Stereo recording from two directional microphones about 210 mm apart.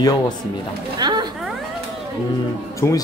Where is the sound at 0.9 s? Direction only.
20° right (ahead or behind).